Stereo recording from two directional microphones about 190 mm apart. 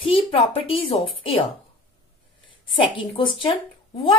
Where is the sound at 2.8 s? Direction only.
25° left (ahead or behind).